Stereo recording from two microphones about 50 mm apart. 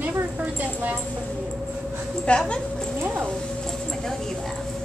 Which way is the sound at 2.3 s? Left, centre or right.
Left.